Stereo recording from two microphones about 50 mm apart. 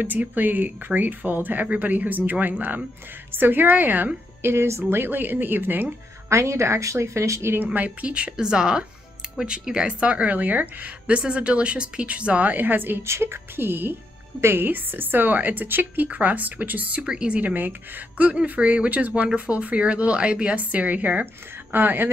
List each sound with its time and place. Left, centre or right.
0.0 s a woman's voice: right
6.2 s a woman's voice: right
7.5 s speech: right
13.0 s a woman's voice: right
17.0 s speech: centre
17.4 s a woman's voice: right
21.7 s a woman's voice: right